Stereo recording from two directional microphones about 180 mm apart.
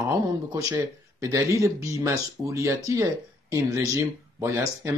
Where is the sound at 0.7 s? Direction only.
15° right (ahead or behind).